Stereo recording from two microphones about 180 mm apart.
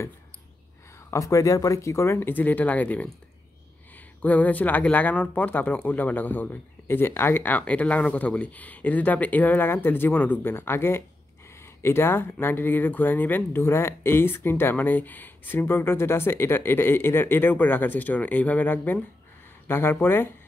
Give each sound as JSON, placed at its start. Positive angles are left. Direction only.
{"t": 1.1, "sound": "speech", "side_deg": 15}